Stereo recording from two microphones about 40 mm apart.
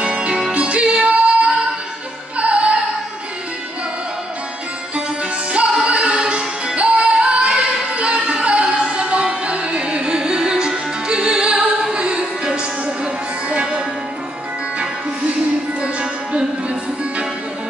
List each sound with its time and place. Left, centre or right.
0.0 s music: right
2.3 s opera: right
5.9 s music: right
15.8 s music: right